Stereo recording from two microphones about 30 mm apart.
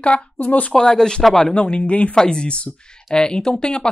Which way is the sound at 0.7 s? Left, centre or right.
Left.